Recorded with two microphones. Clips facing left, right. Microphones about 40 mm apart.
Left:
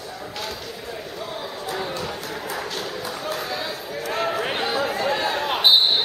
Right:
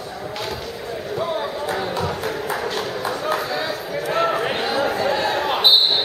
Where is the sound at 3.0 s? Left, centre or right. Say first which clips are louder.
Right 8 dB; right.